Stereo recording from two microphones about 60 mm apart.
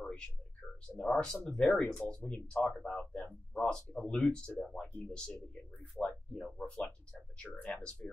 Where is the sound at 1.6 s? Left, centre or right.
Left.